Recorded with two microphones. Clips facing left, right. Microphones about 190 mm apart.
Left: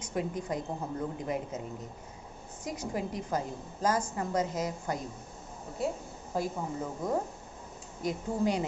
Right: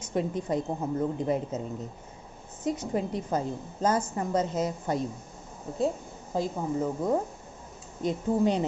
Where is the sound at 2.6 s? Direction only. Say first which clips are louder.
Right 6 dB; 25° right (ahead or behind).